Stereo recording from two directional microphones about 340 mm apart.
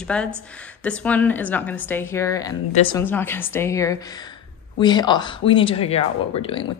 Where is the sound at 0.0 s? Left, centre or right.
Centre.